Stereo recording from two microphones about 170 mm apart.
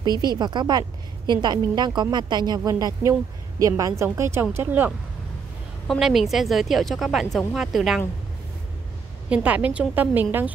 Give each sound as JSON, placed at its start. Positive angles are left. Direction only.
{"t": 0.0, "sound": "a woman's voice", "side_deg": -25}
{"t": 9.3, "sound": "a woman's voice", "side_deg": -10}